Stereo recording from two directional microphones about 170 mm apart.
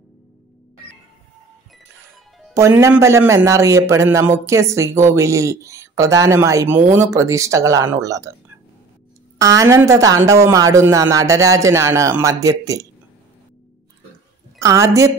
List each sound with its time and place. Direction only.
2.5 s a man's voice: 15° right (ahead or behind)
9.4 s speech: 20° right (ahead or behind)
14.6 s a man's voice: 20° right (ahead or behind)